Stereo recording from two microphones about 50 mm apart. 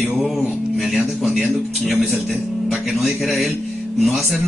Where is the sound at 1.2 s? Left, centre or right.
Centre.